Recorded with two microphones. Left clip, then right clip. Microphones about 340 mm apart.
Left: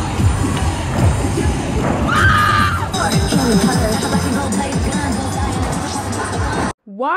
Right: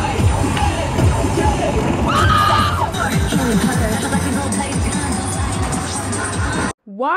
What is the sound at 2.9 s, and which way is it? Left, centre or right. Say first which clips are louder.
Music: left 2 dB; left.